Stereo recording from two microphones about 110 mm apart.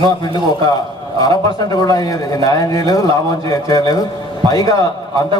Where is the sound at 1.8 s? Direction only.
35° left (ahead or behind).